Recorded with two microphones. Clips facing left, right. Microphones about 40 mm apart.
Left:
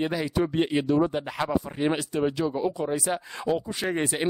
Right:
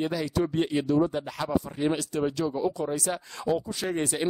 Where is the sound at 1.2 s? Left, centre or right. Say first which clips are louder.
Left 1 dB; left.